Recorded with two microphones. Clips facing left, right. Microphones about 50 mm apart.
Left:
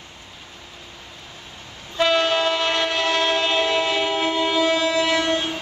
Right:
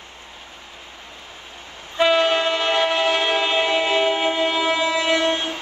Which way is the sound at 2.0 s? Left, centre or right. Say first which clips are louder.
Right 2 dB; centre.